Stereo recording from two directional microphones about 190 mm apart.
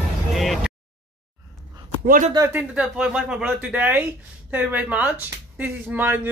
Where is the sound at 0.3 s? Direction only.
Centre (ahead or behind).